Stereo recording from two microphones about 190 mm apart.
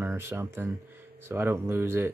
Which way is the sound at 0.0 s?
15° right (ahead or behind).